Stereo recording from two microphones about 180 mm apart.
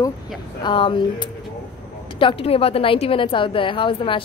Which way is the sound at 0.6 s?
25° left (ahead or behind).